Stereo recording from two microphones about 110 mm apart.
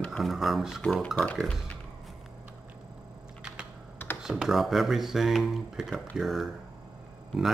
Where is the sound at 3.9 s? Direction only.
20° left (ahead or behind).